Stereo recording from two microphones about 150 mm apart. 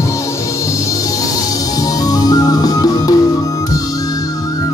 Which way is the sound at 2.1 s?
25° left (ahead or behind).